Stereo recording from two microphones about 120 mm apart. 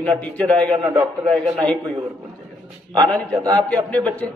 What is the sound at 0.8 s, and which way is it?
Speech, 30° right (ahead or behind).